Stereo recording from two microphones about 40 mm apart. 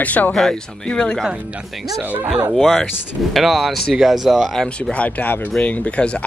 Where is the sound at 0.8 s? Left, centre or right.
Left.